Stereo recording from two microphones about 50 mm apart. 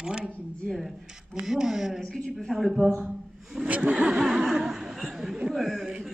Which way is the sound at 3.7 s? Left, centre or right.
Right.